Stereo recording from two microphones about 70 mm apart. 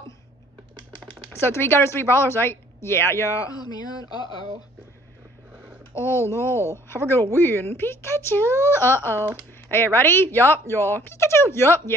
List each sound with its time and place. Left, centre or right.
1.3 s speech: left
5.9 s speech: left